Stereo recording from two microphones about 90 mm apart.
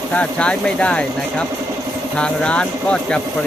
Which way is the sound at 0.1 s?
15° left (ahead or behind).